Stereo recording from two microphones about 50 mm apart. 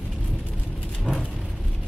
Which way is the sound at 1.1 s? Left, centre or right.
Right.